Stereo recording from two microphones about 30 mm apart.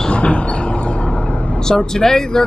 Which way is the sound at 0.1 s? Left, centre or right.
Left.